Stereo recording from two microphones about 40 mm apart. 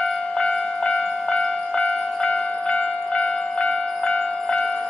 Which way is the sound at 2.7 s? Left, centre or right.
Left.